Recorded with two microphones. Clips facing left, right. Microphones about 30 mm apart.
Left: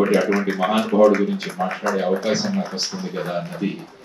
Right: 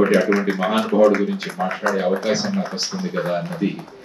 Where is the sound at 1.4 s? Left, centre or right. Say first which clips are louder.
Right 1 dB; right.